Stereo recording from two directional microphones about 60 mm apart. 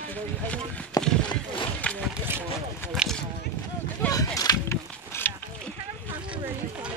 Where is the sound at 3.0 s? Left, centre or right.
Centre.